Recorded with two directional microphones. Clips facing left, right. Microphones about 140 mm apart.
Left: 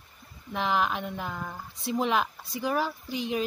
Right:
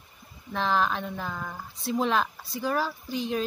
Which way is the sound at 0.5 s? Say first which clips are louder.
Right 1 dB; 15° left (ahead or behind).